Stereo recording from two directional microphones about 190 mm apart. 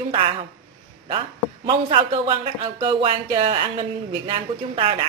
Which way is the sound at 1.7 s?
30° right (ahead or behind).